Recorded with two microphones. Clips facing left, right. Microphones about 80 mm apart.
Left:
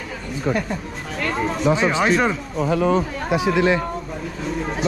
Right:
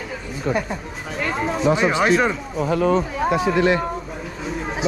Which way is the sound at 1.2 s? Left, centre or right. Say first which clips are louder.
Even; centre.